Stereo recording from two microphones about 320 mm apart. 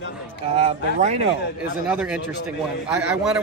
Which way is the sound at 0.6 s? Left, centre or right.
Centre.